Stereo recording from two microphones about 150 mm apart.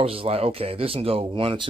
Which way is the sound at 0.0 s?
40° right (ahead or behind).